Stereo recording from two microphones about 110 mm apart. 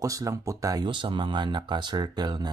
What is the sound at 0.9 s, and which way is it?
Speech, 45° right (ahead or behind).